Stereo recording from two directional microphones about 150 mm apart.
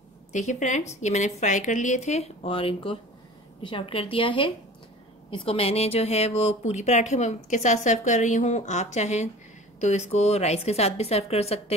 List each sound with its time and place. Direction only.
0.3 s a woman's voice: 50° left (ahead or behind)